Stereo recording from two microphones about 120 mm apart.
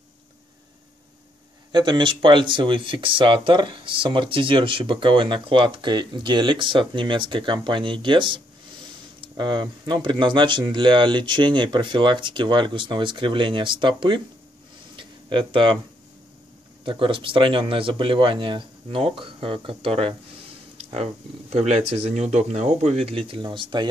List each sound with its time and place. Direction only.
1.7 s speech: 40° right (ahead or behind)
15.0 s a sound: 45° right (ahead or behind)
16.8 s speech: 45° right (ahead or behind)